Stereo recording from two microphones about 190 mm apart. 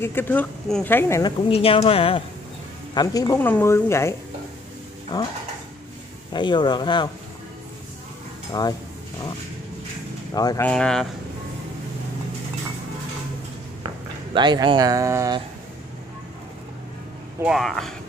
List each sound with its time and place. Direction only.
0.0 s speech: 10° left (ahead or behind)
1.5 s speech: 30° left (ahead or behind); by 4.1 s 15° left (ahead or behind)
5.1 s speech: 20° left (ahead or behind)
6.3 s speech: 25° left (ahead or behind)
10.3 s speech: 20° left (ahead or behind)
10.7 s speech: 5° left (ahead or behind)
14.3 s speech: 25° right (ahead or behind)
17.4 s speech: centre (ahead or behind)